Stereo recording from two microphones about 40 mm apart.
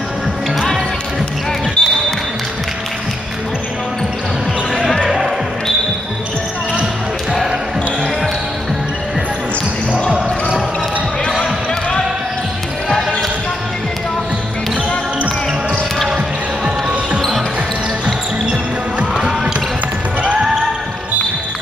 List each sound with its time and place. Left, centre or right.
1.8 s basketball bounce: left
16.6 s music: right
18.0 s basketball bounce: right